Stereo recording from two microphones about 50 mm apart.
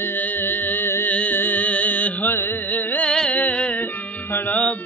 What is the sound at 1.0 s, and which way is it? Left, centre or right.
Music, left.